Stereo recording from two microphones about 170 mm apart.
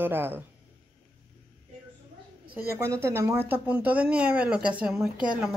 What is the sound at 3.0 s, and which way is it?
Speech, 15° right (ahead or behind).